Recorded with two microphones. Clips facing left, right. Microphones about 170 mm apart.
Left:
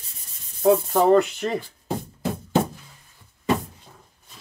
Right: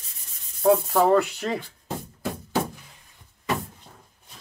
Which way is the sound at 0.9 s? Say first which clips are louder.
Left 2 dB; centre (ahead or behind).